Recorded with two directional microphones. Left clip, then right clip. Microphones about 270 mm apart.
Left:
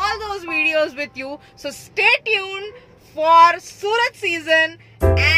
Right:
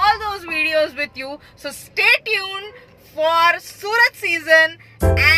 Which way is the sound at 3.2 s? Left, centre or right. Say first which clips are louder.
Left 4 dB; centre.